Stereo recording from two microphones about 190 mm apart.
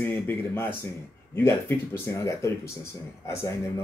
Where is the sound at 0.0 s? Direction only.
10° left (ahead or behind).